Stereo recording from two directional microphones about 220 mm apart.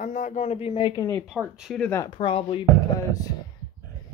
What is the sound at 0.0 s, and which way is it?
Speech, 35° left (ahead or behind).